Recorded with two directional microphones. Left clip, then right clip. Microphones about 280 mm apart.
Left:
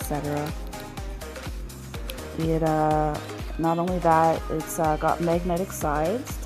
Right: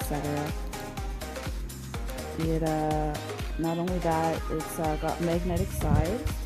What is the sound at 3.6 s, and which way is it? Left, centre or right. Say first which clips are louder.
Speech: left 7 dB; centre.